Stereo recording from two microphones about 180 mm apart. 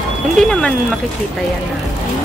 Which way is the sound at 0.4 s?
5° left (ahead or behind).